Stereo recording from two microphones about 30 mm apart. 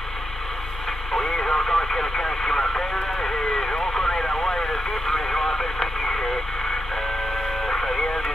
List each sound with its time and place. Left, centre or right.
1.3 s radio: left
7.6 s radio: centre